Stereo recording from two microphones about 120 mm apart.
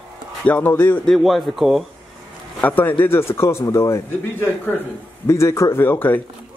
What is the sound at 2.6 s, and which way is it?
Speech, 15° left (ahead or behind).